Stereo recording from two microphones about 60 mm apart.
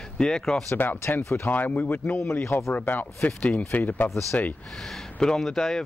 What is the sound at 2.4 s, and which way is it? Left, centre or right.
Speech, left.